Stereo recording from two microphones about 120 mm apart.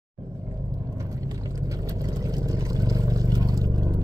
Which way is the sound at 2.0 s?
30° right (ahead or behind).